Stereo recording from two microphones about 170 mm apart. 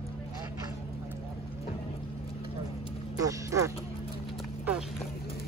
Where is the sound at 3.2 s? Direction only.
20° right (ahead or behind).